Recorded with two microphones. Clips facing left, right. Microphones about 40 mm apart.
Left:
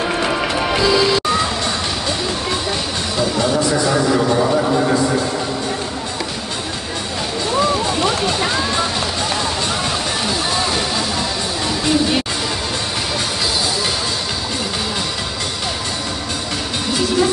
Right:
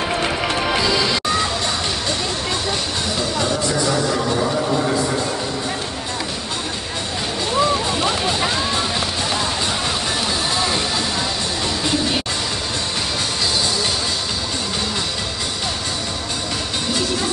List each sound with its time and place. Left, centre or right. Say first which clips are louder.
0.4 s music: left 2 dB; centre
3.9 s speech: left 4 dB; centre